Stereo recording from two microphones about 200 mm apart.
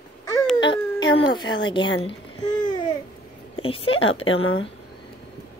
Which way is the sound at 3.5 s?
25° left (ahead or behind).